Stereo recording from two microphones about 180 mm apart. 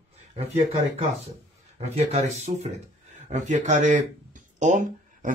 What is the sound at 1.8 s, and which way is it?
Speech, 35° right (ahead or behind).